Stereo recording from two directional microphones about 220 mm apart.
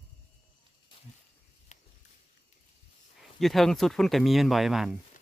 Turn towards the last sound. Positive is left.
turn(degrees=0)  # may be behind; listen again after turning